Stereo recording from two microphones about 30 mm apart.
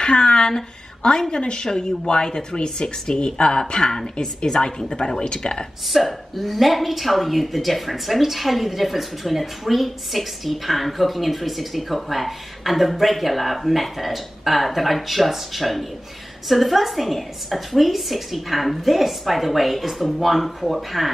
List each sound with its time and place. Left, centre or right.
0.0 s a sound: left
0.5 s speech: left
5.9 s a woman's voice: centre